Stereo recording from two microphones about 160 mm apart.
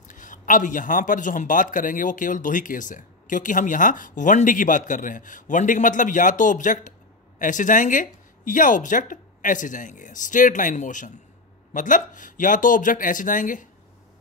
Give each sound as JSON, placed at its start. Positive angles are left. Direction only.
{"t": 0.1, "sound": "a man's voice", "side_deg": 55}